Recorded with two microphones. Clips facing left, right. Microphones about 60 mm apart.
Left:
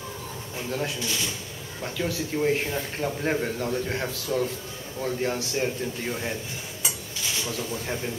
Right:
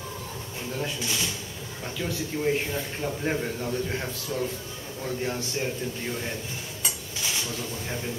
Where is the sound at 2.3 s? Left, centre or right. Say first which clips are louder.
Left 2 dB; left.